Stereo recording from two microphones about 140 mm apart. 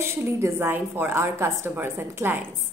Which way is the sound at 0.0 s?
20° right (ahead or behind).